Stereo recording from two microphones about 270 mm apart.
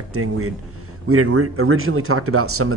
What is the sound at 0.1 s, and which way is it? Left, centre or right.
Speech, right.